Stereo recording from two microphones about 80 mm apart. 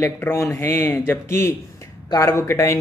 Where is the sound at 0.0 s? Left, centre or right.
Left.